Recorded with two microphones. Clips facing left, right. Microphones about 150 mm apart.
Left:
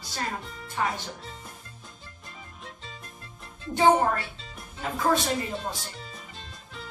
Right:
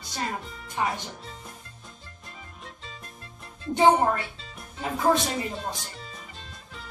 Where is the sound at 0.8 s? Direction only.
20° right (ahead or behind).